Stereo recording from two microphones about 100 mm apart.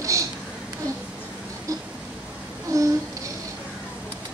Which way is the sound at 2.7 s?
30° right (ahead or behind).